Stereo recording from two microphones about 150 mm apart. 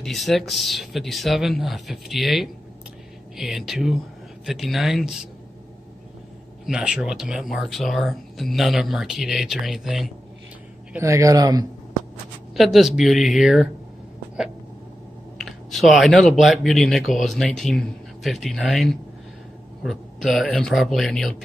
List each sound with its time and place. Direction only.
0.0 s speech: centre (ahead or behind)
6.6 s speech: 5° right (ahead or behind)
11.0 s a man's voice: 20° right (ahead or behind)
12.5 s speech: centre (ahead or behind)
15.3 s speech: centre (ahead or behind)